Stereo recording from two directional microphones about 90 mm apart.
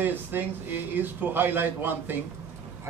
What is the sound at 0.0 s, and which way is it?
Speech, 20° right (ahead or behind).